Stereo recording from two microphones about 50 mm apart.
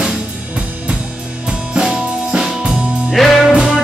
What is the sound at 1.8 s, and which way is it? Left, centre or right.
Music, centre.